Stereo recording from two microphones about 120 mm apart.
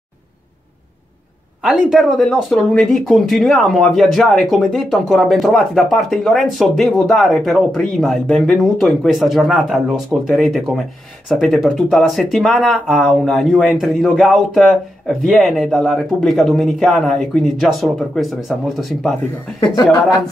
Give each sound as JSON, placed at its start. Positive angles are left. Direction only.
{"t": 1.6, "sound": "speech", "side_deg": -5}